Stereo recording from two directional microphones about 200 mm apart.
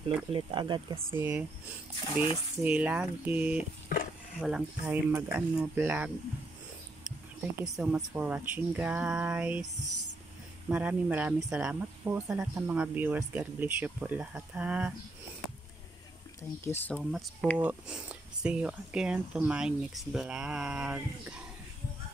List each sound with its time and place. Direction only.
0.3 s speech: 25° right (ahead or behind)
1.1 s speech: 10° right (ahead or behind)
2.6 s speech: 5° right (ahead or behind)
3.9 s stir: 45° left (ahead or behind)
4.4 s speech: 5° right (ahead or behind)
7.5 s speech: 5° right (ahead or behind)
10.7 s speech: 5° right (ahead or behind)
16.6 s speech: 10° left (ahead or behind)
17.0 s speech: centre (ahead or behind)